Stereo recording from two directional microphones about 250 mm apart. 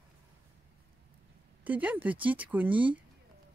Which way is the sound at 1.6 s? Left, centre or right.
Centre.